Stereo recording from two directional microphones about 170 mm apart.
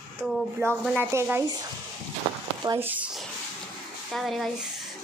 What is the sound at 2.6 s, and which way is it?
Speech, 15° right (ahead or behind).